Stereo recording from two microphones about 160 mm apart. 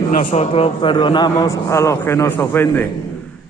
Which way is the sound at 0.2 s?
45° left (ahead or behind).